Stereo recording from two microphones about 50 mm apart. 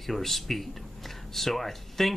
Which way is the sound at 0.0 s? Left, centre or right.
Centre.